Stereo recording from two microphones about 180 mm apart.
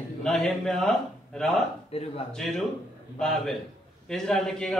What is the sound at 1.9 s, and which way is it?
Speech, 35° left (ahead or behind).